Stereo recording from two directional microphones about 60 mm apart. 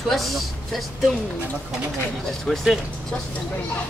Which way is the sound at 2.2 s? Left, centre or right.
Centre.